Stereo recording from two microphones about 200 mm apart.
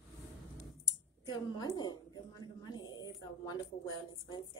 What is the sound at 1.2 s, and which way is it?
A woman's voice, 20° left (ahead or behind).